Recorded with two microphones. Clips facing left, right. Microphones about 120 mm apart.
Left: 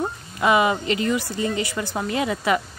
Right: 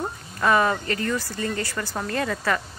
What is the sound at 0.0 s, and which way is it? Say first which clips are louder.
Speech: left 2 dB; 10° left (ahead or behind).